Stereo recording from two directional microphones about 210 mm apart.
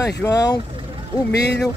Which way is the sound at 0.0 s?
15° left (ahead or behind).